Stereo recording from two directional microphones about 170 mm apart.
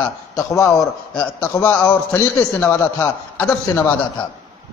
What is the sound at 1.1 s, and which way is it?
A man's voice, 10° left (ahead or behind).